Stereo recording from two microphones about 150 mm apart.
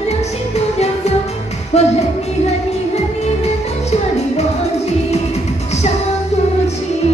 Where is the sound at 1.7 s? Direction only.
45° left (ahead or behind).